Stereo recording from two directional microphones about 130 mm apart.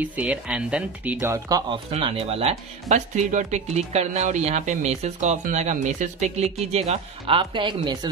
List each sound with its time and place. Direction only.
0.0 s speech: 10° right (ahead or behind)
1.9 s speech: 45° right (ahead or behind)
3.3 s speech: 70° right (ahead or behind)
6.9 s speech: 45° right (ahead or behind)